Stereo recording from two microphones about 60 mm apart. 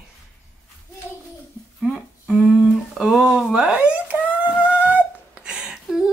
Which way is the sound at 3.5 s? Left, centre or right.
Centre.